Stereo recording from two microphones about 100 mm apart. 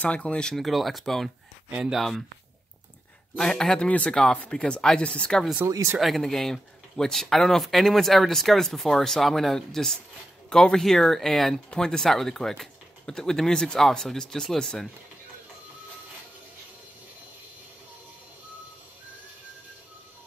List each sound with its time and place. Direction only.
0.0 s speech: 10° left (ahead or behind)
3.3 s speech: 5° left (ahead or behind)
5.7 s speech: 30° right (ahead or behind)
5.9 s speech: centre (ahead or behind)